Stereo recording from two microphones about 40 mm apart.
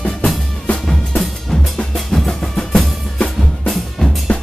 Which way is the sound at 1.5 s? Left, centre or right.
Centre.